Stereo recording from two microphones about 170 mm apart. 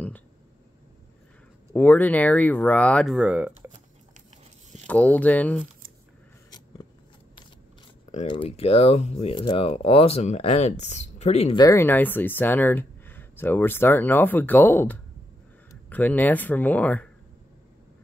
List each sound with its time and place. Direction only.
1.7 s speech: 10° left (ahead or behind)
3.2 s speech: 5° right (ahead or behind)
4.8 s speech: 10° left (ahead or behind)
8.3 s speech: 35° left (ahead or behind)
11.5 s speech: 20° left (ahead or behind)